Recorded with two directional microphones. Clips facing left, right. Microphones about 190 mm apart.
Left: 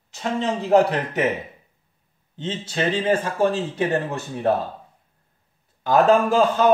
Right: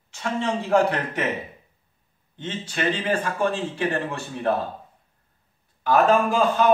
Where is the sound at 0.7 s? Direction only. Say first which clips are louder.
Left 4 dB; 20° left (ahead or behind).